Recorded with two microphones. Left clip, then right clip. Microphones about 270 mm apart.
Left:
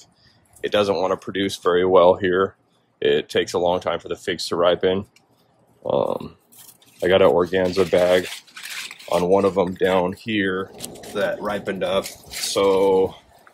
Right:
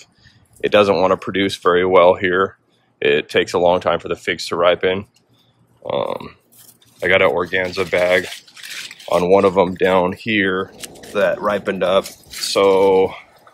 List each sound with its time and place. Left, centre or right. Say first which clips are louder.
0.6 s speech: right 6 dB; centre
10.8 s speech: right 1 dB; left
11.1 s speech: right 7 dB; centre
12.1 s a sound: right 2 dB; left
12.4 s speech: right 4 dB; centre